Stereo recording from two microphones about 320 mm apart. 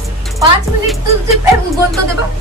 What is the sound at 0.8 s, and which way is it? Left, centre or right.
Music, centre.